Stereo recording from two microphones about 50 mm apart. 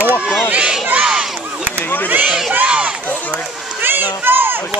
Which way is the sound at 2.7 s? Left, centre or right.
Right.